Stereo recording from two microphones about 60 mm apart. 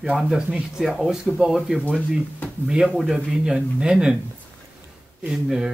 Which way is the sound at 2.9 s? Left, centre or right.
Centre.